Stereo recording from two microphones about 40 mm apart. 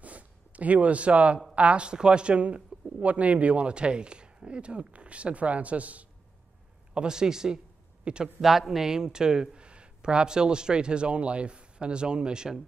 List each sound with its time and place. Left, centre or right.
0.0 s a sound: right
1.5 s speech: right
6.9 s a man's voice: right
8.4 s speech: centre